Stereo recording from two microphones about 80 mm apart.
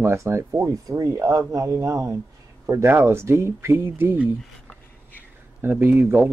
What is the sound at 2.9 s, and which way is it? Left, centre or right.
Speech, right.